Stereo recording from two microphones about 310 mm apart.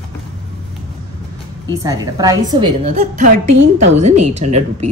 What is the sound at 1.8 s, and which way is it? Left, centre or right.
A woman's voice, centre.